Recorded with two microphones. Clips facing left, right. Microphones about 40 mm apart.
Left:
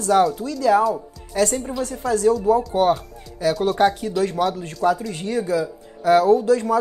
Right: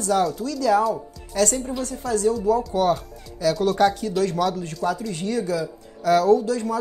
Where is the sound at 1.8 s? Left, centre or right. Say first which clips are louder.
Left 4 dB; left.